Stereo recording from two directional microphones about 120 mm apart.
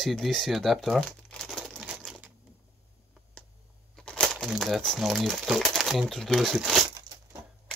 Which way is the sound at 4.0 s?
5° left (ahead or behind).